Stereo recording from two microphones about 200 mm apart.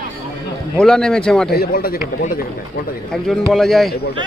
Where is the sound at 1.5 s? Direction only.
50° left (ahead or behind).